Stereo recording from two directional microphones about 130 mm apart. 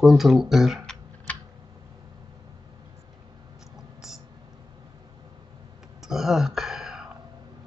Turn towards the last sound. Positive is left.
turn(degrees=-5)  # may be behind; listen again after turning